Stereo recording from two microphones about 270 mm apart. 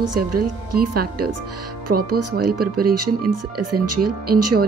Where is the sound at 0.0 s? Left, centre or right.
Right.